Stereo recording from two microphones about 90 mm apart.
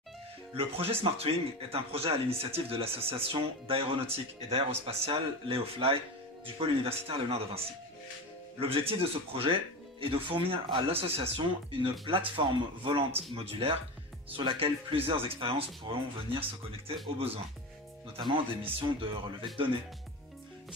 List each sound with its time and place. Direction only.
0.6 s speech: 90° right
12.4 s speech: 70° right (ahead or behind)
13.3 s speech: 85° right
14.3 s speech: 75° right (ahead or behind)
18.1 s speech: 80° right
19.4 s speech: 70° right (ahead or behind)